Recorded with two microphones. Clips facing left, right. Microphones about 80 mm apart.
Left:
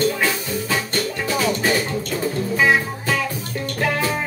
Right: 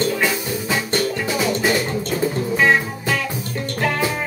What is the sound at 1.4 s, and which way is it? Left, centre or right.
Music, centre.